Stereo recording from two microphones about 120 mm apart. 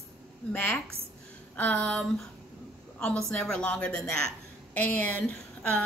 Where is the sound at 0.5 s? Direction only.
15° left (ahead or behind).